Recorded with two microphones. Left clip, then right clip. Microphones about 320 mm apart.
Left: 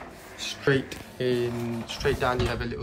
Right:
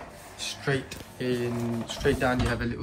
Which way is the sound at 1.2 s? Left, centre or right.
Centre.